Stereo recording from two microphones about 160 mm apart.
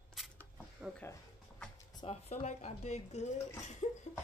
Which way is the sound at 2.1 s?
40° left (ahead or behind).